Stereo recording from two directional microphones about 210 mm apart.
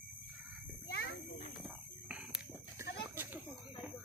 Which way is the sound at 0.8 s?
55° left (ahead or behind).